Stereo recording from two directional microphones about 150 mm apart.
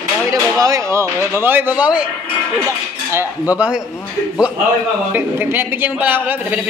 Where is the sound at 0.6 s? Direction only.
20° right (ahead or behind).